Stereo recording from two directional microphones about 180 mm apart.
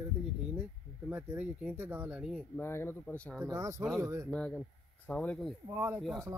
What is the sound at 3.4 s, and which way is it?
Speech, 20° right (ahead or behind).